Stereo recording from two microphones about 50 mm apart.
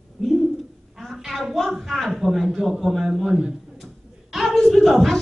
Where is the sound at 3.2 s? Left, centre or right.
Centre.